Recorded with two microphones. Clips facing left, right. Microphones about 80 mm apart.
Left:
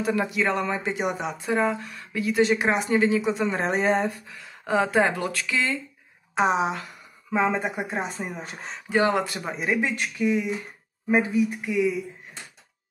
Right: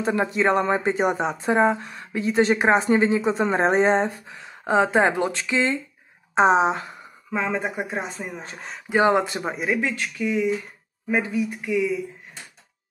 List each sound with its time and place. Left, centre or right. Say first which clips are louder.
0.0 s speech: right 3 dB; right
7.5 s speech: right 1 dB; centre
8.8 s speech: right 3 dB; right
9.8 s speech: even; centre